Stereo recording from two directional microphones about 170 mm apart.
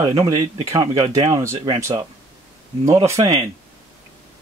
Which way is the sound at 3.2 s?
35° right (ahead or behind).